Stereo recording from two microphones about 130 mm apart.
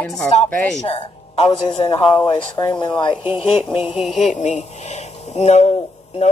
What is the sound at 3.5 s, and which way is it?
Speech, 50° left (ahead or behind).